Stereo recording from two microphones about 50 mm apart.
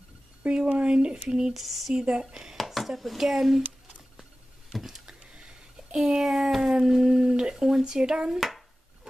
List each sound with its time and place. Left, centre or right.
0.4 s speech: centre
1.5 s speech: centre
2.0 s speech: centre
2.5 s speech: centre
4.7 s a sound: centre
5.9 s speech: centre
8.4 s speech: centre